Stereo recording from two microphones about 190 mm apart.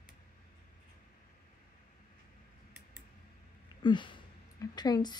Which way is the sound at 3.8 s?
25° left (ahead or behind).